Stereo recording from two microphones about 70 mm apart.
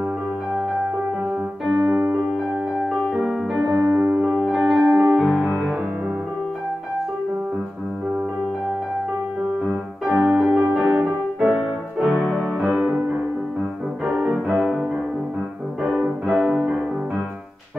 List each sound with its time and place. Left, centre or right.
1.7 s piano: centre
2.8 s music: centre
3.2 s piano: centre
3.9 s music: right
4.2 s music: centre
10.1 s keyboard: centre
10.7 s music: centre
11.4 s music: centre
12.5 s music: centre